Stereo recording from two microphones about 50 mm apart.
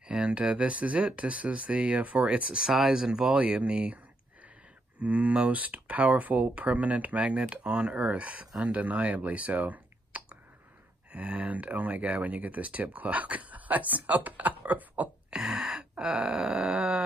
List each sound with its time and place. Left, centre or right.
0.2 s speech: right
2.7 s speech: centre
5.0 s speech: right
15.3 s gasp: centre
16.0 s groan: centre